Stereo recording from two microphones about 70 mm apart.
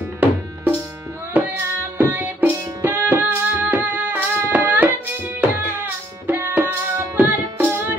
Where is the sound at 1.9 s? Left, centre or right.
Right.